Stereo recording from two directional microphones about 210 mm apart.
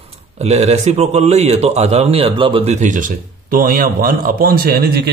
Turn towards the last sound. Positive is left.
turn(degrees=-50)  # may be behind; listen again after turning